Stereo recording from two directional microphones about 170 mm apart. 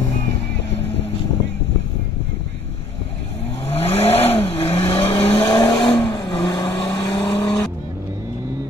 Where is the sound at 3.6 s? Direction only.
35° left (ahead or behind).